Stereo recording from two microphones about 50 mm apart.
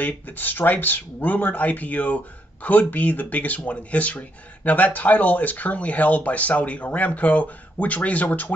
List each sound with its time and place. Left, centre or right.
0.0 s speech: left